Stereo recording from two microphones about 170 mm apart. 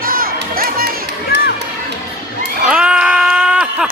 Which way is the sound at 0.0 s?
60° right (ahead or behind).